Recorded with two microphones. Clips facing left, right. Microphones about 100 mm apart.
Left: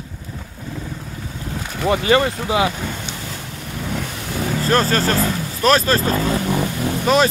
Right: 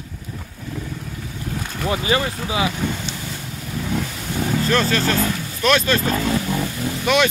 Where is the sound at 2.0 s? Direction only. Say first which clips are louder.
Left 5 dB; 65° left (ahead or behind).